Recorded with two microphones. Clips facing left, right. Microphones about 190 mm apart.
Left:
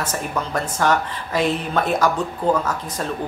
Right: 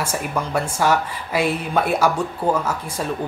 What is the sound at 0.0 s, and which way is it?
Speech, 10° right (ahead or behind).